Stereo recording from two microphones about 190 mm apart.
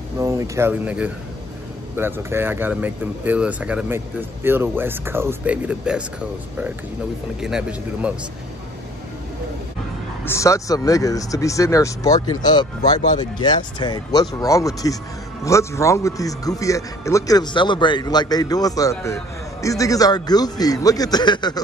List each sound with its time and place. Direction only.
0.2 s speech: 15° right (ahead or behind)
7.3 s speech: 5° right (ahead or behind)
10.2 s speech: 15° left (ahead or behind)